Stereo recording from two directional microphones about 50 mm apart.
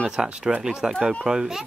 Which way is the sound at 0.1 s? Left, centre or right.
Centre.